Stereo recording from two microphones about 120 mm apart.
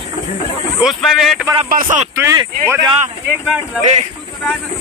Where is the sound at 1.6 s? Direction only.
85° right.